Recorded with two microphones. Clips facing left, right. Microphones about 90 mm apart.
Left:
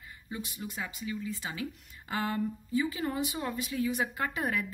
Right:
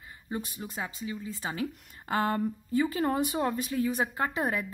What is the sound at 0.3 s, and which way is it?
A woman's voice, 40° right (ahead or behind).